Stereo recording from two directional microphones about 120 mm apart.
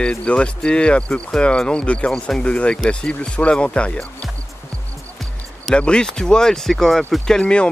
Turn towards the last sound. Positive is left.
turn(degrees=10)  # may be behind; listen again after turning